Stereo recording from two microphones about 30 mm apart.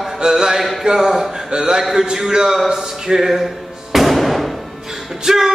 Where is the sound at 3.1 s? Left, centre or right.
Centre.